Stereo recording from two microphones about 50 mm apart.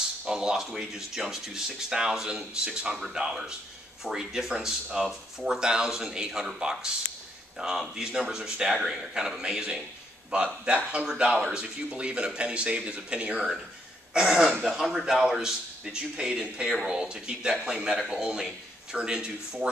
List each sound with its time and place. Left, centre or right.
0.3 s speech: centre
4.8 s speech: centre
5.4 s speech: centre
14.1 s speech: centre